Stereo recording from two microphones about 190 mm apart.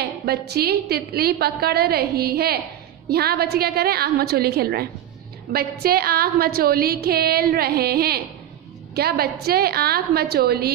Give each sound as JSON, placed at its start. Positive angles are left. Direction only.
{"t": 0.0, "sound": "a woman's voice", "side_deg": -60}